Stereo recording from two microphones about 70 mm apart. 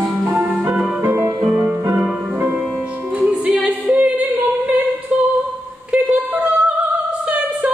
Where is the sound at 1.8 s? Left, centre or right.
Right.